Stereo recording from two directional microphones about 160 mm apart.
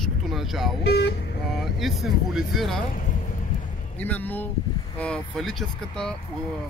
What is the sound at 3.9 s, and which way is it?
Speech, 10° left (ahead or behind).